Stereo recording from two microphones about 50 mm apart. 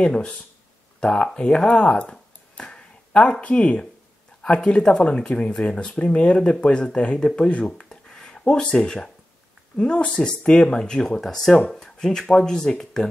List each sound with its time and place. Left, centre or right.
0.0 s speech: centre